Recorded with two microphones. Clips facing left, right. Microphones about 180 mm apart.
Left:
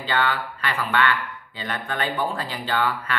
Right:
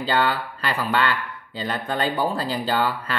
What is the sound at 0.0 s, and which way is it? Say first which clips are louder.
A man's voice: right 2 dB; 35° right (ahead or behind).